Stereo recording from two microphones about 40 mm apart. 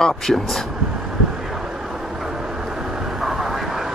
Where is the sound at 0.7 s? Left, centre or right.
Centre.